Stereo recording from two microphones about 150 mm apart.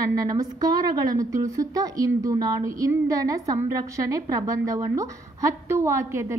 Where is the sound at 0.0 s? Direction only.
25° right (ahead or behind).